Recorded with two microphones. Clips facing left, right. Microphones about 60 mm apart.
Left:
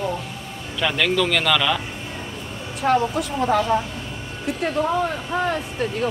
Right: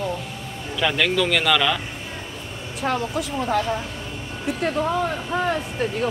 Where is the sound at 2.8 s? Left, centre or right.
Centre.